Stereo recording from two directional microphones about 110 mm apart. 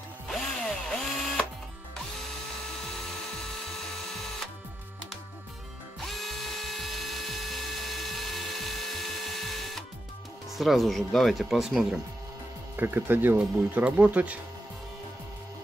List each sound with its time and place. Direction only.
0.3 s drill: 5° left (ahead or behind)
6.0 s dental drill: centre (ahead or behind)
10.6 s speech: centre (ahead or behind)
12.7 s speech: 20° right (ahead or behind)